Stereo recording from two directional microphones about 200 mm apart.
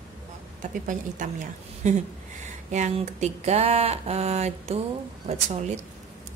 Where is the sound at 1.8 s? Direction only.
35° right (ahead or behind).